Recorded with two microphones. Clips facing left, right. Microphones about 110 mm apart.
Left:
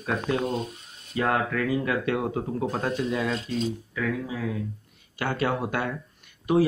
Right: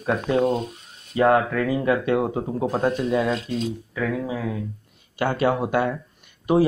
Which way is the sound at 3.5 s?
5° right (ahead or behind).